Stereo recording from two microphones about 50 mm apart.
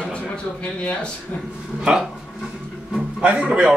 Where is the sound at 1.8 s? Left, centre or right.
Centre.